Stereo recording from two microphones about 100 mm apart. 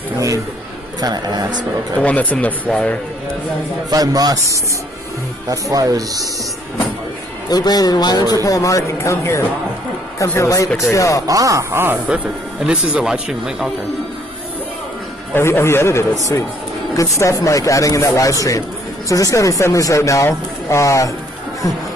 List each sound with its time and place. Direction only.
1.0 s a man's voice: 40° right (ahead or behind)
2.0 s speech: 15° left (ahead or behind)
3.9 s speech: 40° right (ahead or behind)
7.4 s speech: 40° left (ahead or behind)
11.2 s speech: 35° right (ahead or behind)
12.6 s a man's voice: 10° right (ahead or behind)
15.3 s a man's voice: 25° left (ahead or behind)